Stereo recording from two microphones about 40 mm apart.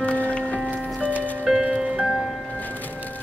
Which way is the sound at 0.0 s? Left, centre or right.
Left.